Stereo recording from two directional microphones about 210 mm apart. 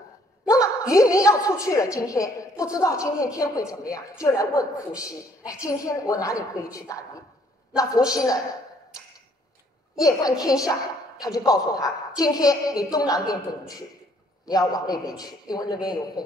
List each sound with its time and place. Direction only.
0.5 s a woman's voice: 15° left (ahead or behind)
10.0 s a woman's voice: 15° left (ahead or behind)